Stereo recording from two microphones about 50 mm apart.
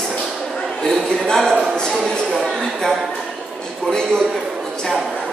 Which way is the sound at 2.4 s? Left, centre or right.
Centre.